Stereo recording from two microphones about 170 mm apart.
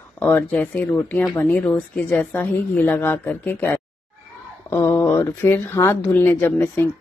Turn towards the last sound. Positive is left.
turn(degrees=10)  # may be behind; listen again after turning